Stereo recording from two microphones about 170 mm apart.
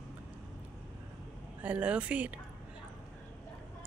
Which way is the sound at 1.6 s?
10° right (ahead or behind).